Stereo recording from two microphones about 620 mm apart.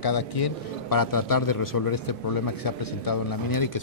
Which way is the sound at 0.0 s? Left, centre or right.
Left.